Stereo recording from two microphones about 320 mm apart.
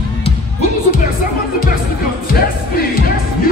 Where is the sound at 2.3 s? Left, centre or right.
Left.